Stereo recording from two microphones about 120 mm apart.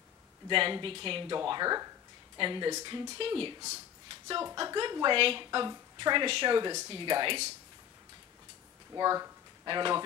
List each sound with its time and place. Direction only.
0.5 s speech: 45° right (ahead or behind)
1.5 s a woman's voice: 35° right (ahead or behind)
3.2 s speech: 45° right (ahead or behind)
4.6 s a woman's voice: 40° right (ahead or behind)
8.9 s speech: 30° right (ahead or behind)